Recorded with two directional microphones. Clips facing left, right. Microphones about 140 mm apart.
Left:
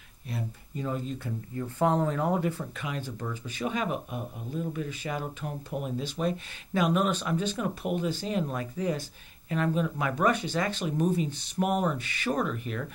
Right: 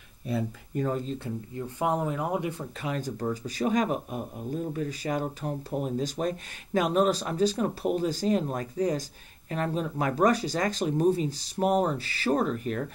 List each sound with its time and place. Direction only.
0.7 s speech: 45° right (ahead or behind)
1.8 s speech: 15° right (ahead or behind)
2.7 s speech: 35° right (ahead or behind)